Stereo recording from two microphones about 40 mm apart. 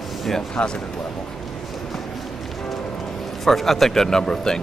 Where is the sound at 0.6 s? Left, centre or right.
Left.